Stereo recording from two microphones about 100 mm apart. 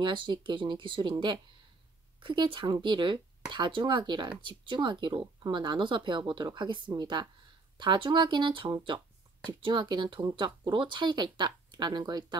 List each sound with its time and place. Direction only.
0.0 s speech: 55° right (ahead or behind)